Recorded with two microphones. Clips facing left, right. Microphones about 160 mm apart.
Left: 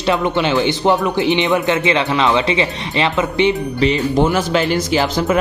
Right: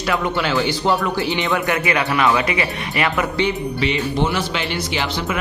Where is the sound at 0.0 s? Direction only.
20° left (ahead or behind).